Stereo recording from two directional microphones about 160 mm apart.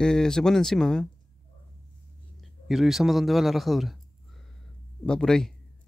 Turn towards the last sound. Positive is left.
turn(degrees=5)  # may be behind; listen again after turning